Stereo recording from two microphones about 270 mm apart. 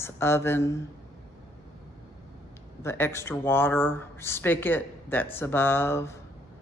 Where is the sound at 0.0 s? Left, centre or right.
Centre.